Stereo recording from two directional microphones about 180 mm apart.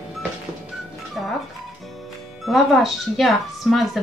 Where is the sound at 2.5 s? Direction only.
Centre (ahead or behind).